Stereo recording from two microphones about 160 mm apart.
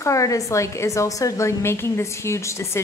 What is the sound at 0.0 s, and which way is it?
A woman's voice, 20° left (ahead or behind).